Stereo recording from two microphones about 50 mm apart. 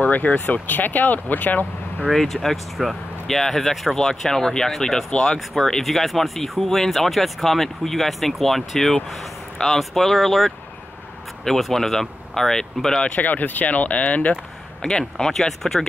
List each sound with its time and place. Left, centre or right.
0.0 s speech: left
2.1 s speech: centre
13.0 s speech: left
14.8 s speech: centre